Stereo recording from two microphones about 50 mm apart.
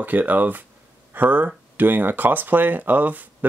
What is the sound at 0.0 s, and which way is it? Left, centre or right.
Speech, right.